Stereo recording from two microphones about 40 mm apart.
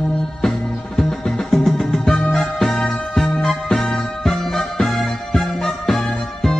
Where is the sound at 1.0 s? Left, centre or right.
Centre.